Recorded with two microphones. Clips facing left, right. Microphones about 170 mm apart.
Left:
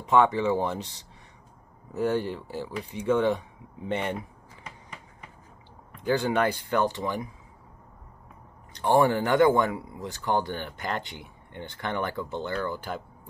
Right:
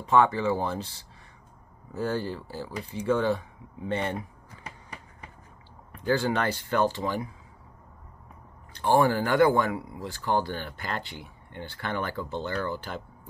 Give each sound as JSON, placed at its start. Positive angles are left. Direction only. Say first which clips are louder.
{"t": 0.0, "sound": "speech", "louder": "left 1 dB", "side_deg": 20}
{"t": 6.0, "sound": "speech", "louder": "left 1 dB", "side_deg": 15}
{"t": 8.7, "sound": "speech", "louder": "left 1 dB", "side_deg": 20}